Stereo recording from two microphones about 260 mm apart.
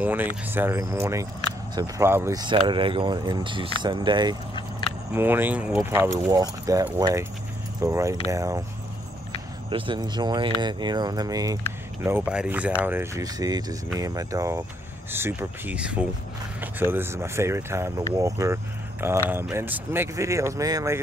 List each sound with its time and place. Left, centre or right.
0.0 s speech: centre
4.6 s vehicle: centre
5.1 s speech: centre
9.7 s speech: centre